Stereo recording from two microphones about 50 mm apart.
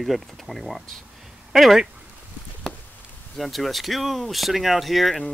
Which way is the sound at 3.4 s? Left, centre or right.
Centre.